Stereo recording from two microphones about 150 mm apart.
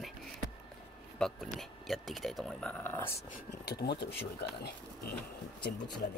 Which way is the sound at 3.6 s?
90° left.